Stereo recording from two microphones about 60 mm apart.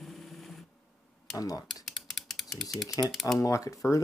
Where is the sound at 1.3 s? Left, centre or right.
Left.